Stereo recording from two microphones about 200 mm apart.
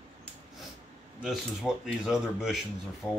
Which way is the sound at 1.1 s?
Centre (ahead or behind).